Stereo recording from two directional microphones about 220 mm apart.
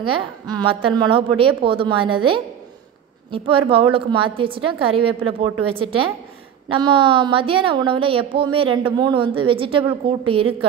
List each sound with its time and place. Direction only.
0.0 s a woman's voice: 20° right (ahead or behind)
3.3 s a woman's voice: 25° right (ahead or behind)